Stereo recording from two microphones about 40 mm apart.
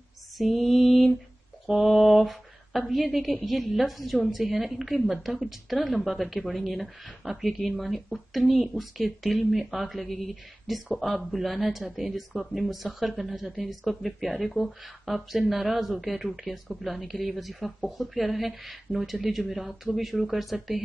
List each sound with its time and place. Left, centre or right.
0.4 s mantra: centre
2.9 s a woman's voice: centre